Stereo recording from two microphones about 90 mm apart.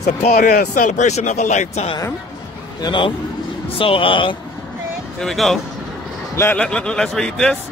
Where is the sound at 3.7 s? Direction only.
85° left.